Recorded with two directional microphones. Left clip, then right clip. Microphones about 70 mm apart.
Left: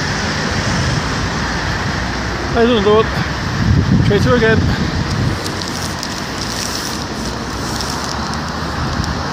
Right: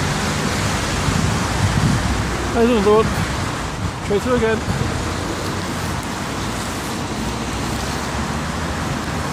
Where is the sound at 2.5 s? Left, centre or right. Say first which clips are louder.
Left 3 dB; centre.